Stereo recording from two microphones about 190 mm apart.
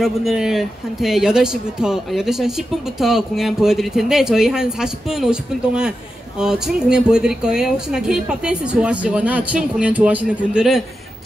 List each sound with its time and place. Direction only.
0.0 s speech: centre (ahead or behind)